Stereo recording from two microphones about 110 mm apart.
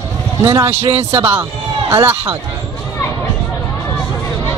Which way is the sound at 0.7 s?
65° right (ahead or behind).